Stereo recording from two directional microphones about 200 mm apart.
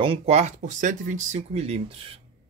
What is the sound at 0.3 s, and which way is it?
Speech, 35° right (ahead or behind).